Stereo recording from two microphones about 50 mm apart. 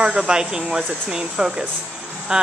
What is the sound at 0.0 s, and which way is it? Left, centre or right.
Speech, centre.